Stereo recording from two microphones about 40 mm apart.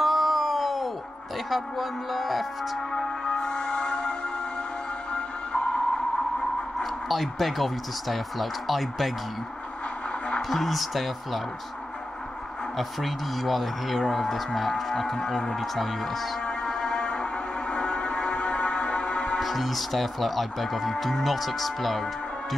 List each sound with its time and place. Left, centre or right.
0.0 s a sound: centre
1.5 s speech: centre
2.9 s music: centre
5.1 s music: left
6.8 s speech: centre
10.5 s speech: centre
12.7 s speech: centre
16.4 s music: centre
19.4 s speech: centre